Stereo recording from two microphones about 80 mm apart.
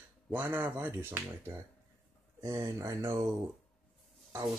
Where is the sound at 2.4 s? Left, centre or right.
Right.